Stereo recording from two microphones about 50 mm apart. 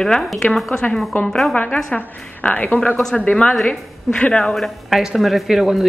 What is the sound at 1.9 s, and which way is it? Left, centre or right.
A woman's voice, left.